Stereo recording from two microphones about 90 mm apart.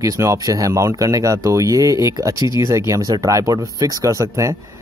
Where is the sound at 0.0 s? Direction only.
35° right (ahead or behind).